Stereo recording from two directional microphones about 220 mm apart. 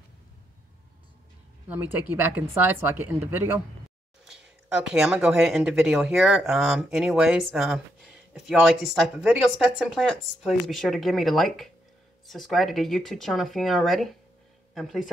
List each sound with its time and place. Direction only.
1.7 s a woman's voice: 10° right (ahead or behind)